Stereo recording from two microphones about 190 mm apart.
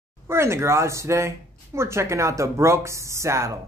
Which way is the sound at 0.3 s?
15° right (ahead or behind).